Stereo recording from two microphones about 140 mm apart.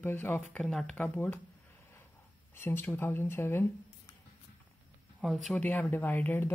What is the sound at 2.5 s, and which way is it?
Speech, 15° left (ahead or behind).